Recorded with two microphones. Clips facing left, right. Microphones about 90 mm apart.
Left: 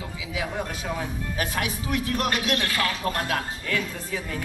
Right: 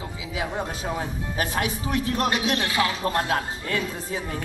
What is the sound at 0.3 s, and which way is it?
Speech, 30° right (ahead or behind).